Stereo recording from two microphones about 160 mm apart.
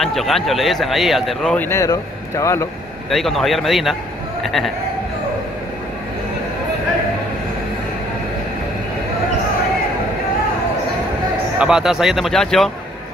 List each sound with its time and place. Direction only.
0.0 s a man's voice: centre (ahead or behind)
1.7 s speech: 20° left (ahead or behind)
3.1 s a man's voice: centre (ahead or behind)
11.5 s a man's voice: 5° right (ahead or behind)